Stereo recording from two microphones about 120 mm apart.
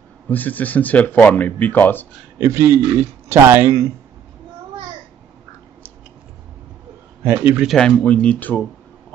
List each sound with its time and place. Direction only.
0.3 s speech: 15° left (ahead or behind)
2.4 s a man's voice: 25° right (ahead or behind)
7.6 s speech: 5° left (ahead or behind)